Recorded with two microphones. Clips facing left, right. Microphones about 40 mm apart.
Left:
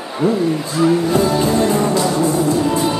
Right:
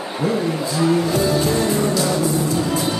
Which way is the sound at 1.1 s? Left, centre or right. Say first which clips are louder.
Left 3 dB; left.